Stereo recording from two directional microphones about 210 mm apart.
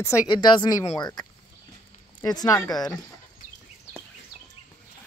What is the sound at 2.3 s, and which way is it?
Speech, 20° left (ahead or behind).